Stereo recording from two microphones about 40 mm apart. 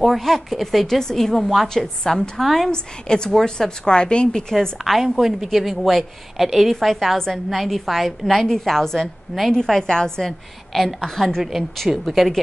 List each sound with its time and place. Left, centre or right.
0.0 s a woman's voice: centre
2.7 s a woman's voice: centre
5.0 s a woman's voice: centre
10.7 s a woman's voice: centre
11.1 s a woman's voice: centre